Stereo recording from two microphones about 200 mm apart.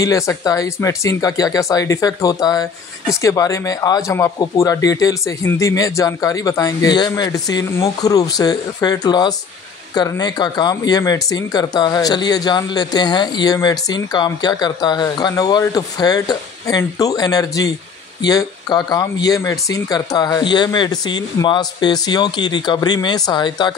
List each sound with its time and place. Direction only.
0.0 s speech: 15° left (ahead or behind)